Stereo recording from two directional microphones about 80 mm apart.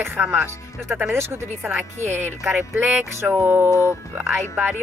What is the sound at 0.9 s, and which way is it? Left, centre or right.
Speech, centre.